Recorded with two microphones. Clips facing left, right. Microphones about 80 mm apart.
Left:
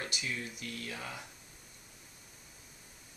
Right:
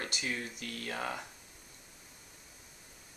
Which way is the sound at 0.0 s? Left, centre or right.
Right.